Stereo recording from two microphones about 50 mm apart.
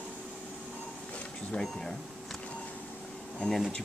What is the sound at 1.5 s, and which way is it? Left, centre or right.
Speech, centre.